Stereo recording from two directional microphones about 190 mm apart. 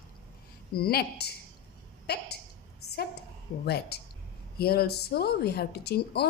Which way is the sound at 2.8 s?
60° left (ahead or behind).